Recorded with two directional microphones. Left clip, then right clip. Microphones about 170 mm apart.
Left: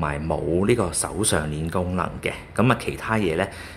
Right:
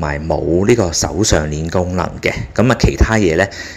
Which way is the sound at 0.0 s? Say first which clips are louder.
Right 7 dB; 15° right (ahead or behind).